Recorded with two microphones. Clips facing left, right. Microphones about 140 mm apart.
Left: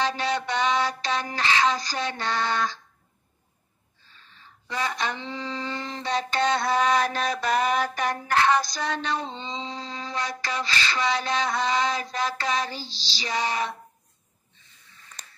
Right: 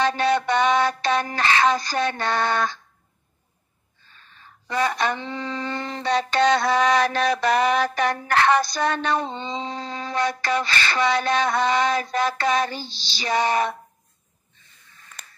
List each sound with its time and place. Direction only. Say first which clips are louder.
0.0 s speech: right 6 dB; 55° right (ahead or behind)
4.0 s speech: right 2 dB; 55° right (ahead or behind)